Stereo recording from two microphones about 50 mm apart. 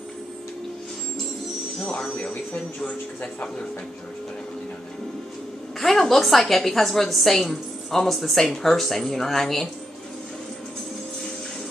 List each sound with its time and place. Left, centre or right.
2.5 s speech: left
5.8 s a woman's voice: centre